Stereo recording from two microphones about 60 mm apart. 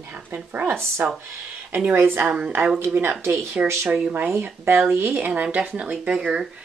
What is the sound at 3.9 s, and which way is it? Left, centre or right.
Speech, right.